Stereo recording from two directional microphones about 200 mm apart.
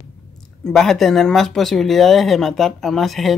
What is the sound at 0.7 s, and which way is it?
Speech, centre (ahead or behind).